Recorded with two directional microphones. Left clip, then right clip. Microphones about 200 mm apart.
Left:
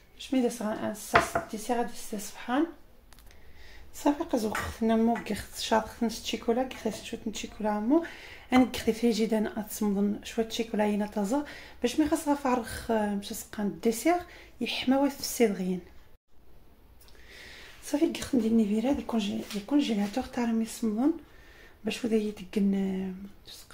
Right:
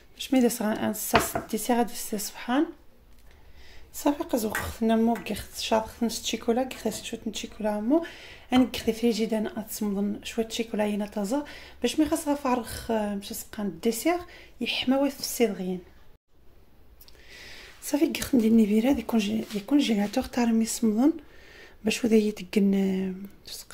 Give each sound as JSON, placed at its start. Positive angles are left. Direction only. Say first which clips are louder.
{"t": 0.2, "sound": "speech", "louder": "right 5 dB", "side_deg": -35}
{"t": 4.0, "sound": "speech", "louder": "right 1 dB", "side_deg": -10}
{"t": 17.3, "sound": "a woman's voice", "louder": "right 2 dB", "side_deg": -15}